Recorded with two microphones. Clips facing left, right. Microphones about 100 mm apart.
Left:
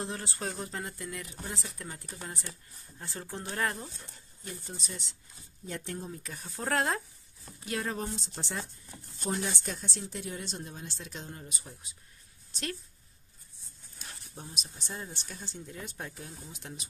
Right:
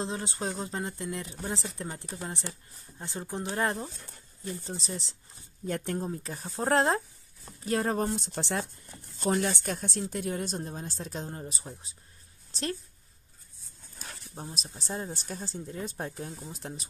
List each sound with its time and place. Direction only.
0.0 s speech: 20° right (ahead or behind)
5.7 s speech: 45° right (ahead or behind)
8.1 s speech: 65° right (ahead or behind); by 12.0 s 30° right (ahead or behind)
12.4 s a sound: 30° right (ahead or behind)
14.3 s speech: 35° right (ahead or behind)